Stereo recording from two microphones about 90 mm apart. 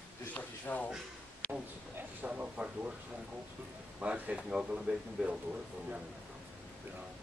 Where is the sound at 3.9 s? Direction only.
15° right (ahead or behind).